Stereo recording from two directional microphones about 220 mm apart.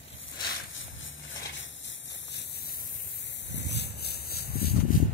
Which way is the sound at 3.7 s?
50° left (ahead or behind).